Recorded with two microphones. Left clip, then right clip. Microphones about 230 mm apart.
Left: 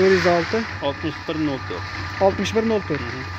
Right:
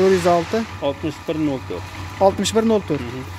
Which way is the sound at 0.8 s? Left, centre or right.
Right.